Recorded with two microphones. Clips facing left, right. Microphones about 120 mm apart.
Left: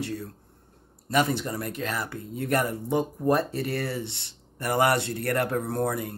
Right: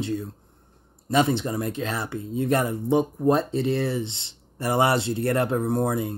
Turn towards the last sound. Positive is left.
turn(degrees=-20)  # may be behind; listen again after turning